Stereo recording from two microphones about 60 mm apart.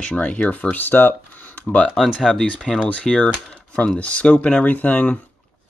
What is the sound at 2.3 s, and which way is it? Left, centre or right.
Speech, centre.